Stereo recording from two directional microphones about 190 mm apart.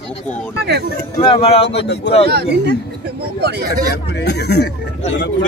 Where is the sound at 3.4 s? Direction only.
60° right (ahead or behind).